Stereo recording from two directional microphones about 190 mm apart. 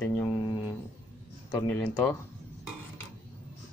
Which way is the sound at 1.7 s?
10° left (ahead or behind).